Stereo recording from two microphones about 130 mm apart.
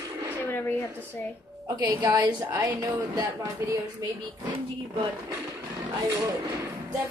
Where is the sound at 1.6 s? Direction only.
30° right (ahead or behind).